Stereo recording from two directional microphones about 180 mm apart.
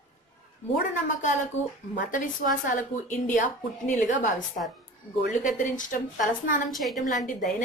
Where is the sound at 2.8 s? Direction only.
45° left (ahead or behind).